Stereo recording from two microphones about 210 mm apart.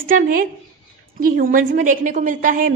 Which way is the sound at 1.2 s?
45° right (ahead or behind).